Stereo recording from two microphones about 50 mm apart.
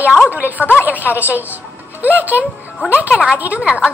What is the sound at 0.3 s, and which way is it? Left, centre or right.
Speech, right.